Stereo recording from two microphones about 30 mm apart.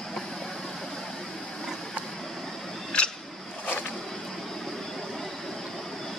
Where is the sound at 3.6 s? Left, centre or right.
Left.